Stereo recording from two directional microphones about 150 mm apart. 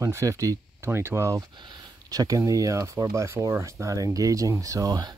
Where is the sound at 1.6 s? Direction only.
30° right (ahead or behind).